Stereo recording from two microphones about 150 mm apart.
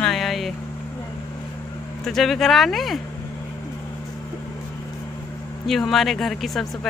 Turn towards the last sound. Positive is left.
turn(degrees=0)  # may be behind; listen again after turning